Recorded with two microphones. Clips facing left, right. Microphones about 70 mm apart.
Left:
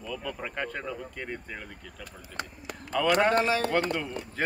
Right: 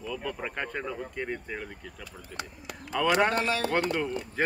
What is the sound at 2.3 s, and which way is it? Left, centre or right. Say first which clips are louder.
Speech: left 2 dB; left.